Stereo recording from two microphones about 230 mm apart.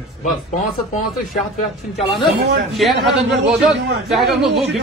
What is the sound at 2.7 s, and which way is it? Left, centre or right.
Speech, centre.